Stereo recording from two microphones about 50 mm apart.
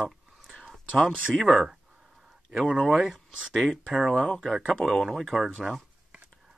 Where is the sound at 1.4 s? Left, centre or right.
Centre.